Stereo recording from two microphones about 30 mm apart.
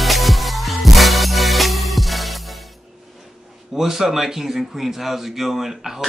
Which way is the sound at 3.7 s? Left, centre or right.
Centre.